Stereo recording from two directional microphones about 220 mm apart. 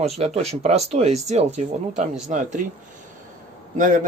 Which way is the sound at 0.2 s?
30° right (ahead or behind).